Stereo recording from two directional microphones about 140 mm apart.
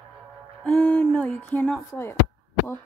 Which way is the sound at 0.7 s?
5° left (ahead or behind).